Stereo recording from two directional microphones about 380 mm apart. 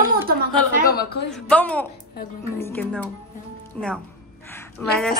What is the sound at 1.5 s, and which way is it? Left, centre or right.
A woman's voice, centre.